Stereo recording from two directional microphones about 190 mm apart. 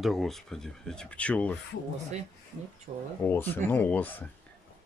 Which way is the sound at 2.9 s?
35° right (ahead or behind).